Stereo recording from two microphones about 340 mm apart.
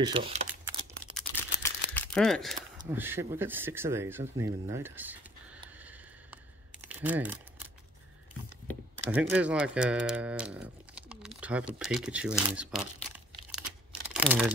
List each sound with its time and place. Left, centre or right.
0.0 s typing: centre
1.1 s camera: centre
2.8 s speech: centre
6.9 s a sound: centre
8.6 s speech: centre
14.0 s a sound: centre